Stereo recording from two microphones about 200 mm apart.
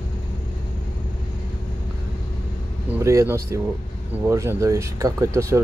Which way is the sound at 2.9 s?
15° right (ahead or behind).